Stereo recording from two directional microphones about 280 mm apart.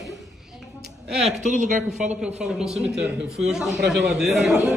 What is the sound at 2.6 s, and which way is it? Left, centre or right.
Speech, centre.